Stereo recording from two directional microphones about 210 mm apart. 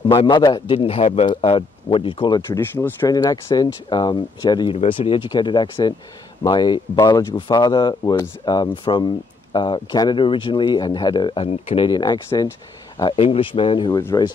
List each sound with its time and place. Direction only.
0.1 s speech: 25° left (ahead or behind)